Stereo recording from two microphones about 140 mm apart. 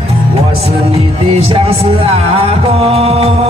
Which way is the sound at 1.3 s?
40° right (ahead or behind).